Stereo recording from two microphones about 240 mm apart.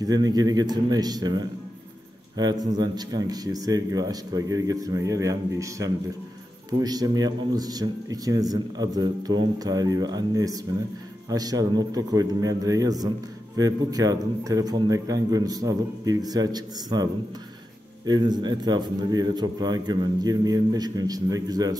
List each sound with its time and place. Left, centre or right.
0.0 s a man's voice: centre